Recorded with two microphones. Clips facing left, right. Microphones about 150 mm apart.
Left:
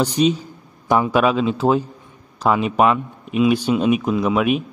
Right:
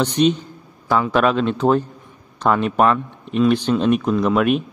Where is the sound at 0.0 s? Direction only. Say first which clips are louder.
Right 1 dB; 5° left (ahead or behind).